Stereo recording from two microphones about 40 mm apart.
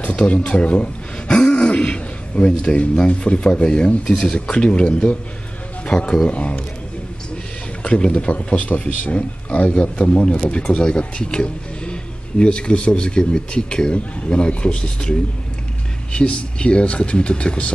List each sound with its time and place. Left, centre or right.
0.0 s a man's voice: left
1.3 s throat clearing: left
3.1 s speech: left
7.8 s a man's voice: left